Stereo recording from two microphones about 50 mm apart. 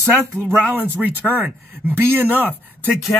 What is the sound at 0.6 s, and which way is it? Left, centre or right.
Speech, right.